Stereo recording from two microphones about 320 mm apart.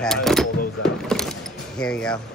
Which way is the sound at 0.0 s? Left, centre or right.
Centre.